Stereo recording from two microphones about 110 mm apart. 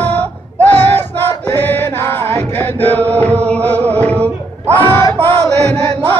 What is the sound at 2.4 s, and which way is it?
Chant, 20° left (ahead or behind).